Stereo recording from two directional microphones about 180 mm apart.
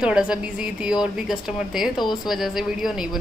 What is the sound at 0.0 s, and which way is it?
A woman's voice, 5° right (ahead or behind).